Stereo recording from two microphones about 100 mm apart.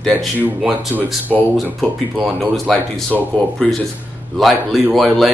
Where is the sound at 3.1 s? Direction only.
10° left (ahead or behind).